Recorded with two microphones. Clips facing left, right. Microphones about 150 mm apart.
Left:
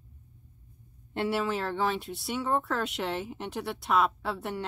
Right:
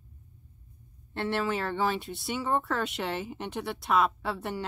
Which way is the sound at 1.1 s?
10° left (ahead or behind).